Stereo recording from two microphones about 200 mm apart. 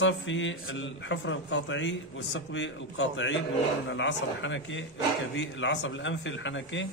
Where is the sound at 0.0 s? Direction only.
70° left (ahead or behind).